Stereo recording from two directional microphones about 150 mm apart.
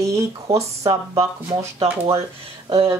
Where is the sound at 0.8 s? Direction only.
20° right (ahead or behind).